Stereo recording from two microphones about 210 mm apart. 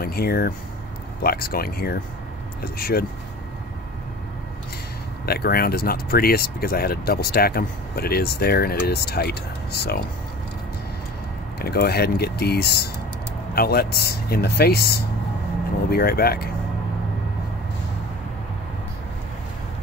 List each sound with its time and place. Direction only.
0.0 s speech: 45° left (ahead or behind)
5.2 s speech: 50° left (ahead or behind)
11.6 s speech: 50° left (ahead or behind)